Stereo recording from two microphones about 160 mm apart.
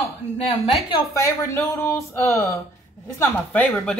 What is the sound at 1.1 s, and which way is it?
Speech, 20° left (ahead or behind).